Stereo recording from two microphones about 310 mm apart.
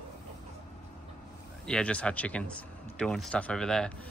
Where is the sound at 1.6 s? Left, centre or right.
Centre.